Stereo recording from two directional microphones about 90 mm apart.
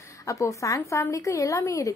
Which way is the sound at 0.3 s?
35° left (ahead or behind).